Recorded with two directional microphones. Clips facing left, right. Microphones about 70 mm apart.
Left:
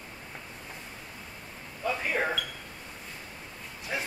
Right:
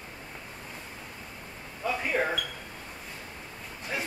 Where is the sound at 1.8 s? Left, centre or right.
Centre.